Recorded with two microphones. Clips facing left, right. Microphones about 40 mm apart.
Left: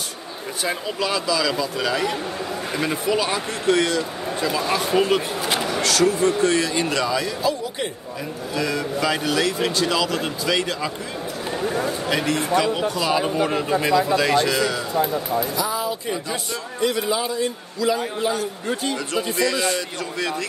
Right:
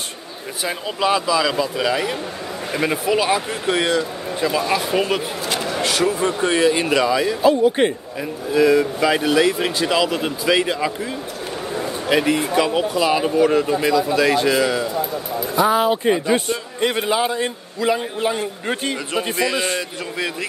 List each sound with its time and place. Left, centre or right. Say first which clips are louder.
0.8 s a man's voice: right 7 dB; right
7.4 s a man's voice: right 9 dB; right
8.5 s speech: right 8 dB; centre
12.1 s speech: right 5 dB; centre
13.4 s a man's voice: right 4 dB; centre
15.5 s a man's voice: right 8 dB; right
20.2 s a man's voice: right 1 dB; centre